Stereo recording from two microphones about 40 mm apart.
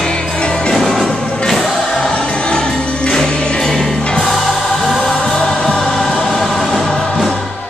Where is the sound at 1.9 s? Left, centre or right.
Centre.